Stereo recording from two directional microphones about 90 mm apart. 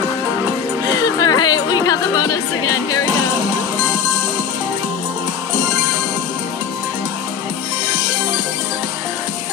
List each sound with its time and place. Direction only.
0.8 s music: 40° left (ahead or behind)